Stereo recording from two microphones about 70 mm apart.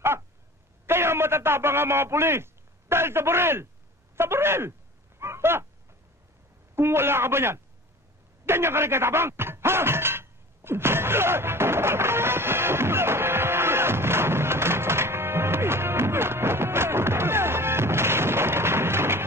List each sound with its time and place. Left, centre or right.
0.8 s a man's voice: right
5.2 s a sound: right
6.7 s a man's voice: right
8.5 s music: right